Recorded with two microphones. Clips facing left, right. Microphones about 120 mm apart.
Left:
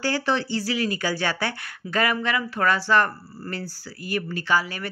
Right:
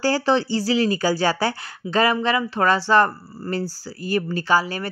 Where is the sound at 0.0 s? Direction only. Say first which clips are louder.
Right 5 dB; 35° right (ahead or behind).